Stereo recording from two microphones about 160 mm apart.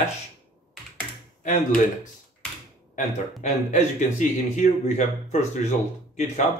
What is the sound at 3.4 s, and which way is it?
Speech, 50° left (ahead or behind).